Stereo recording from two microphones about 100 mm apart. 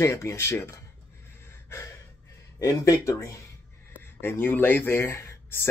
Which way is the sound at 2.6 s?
35° left (ahead or behind).